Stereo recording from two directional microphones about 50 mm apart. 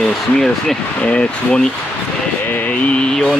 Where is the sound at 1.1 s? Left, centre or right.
Centre.